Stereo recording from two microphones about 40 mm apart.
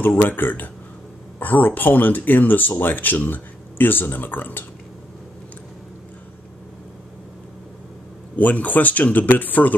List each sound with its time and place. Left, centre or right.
0.0 s speech: left
8.4 s speech: left